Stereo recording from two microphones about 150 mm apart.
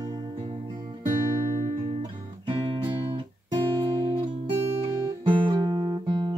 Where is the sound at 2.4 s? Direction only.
35° right (ahead or behind).